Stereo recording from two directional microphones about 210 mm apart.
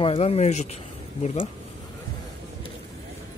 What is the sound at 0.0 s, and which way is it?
Speech, 25° left (ahead or behind).